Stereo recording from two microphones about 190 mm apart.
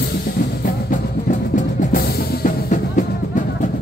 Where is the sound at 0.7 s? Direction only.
40° left (ahead or behind).